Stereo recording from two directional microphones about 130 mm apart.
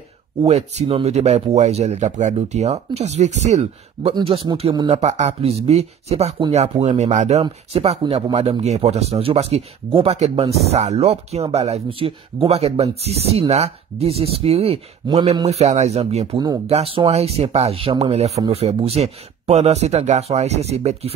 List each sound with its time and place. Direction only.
0.4 s speech: 60° right (ahead or behind)
4.0 s speech: 45° right (ahead or behind)
4.8 s speech: 55° right (ahead or behind)